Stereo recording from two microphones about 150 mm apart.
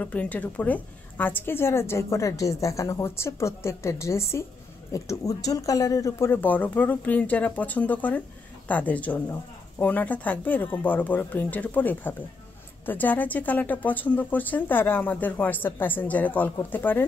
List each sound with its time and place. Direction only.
0.0 s a woman's voice: 10° left (ahead or behind)